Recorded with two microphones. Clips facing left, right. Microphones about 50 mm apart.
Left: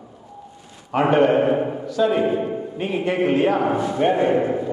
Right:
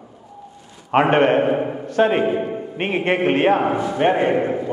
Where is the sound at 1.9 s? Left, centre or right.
Right.